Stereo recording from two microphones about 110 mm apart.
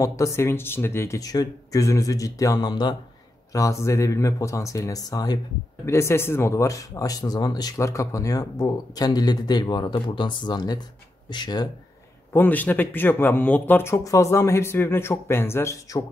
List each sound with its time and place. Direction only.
0.0 s speech: 30° left (ahead or behind)
3.5 s speech: 30° left (ahead or behind)
5.9 s speech: 25° left (ahead or behind); by 11.7 s 40° left (ahead or behind)
12.3 s speech: 15° left (ahead or behind)